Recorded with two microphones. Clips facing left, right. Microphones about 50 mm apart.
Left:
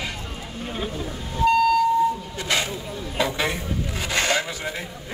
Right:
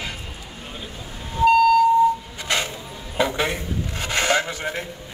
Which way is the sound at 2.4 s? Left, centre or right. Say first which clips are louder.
Even; centre.